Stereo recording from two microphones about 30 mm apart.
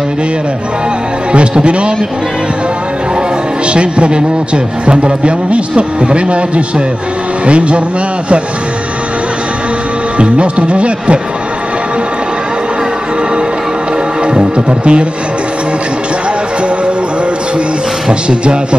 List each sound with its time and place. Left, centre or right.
1.3 s a man's voice: right
3.7 s a man's voice: right
10.1 s a man's voice: right
14.2 s a man's voice: right
18.4 s a man's voice: right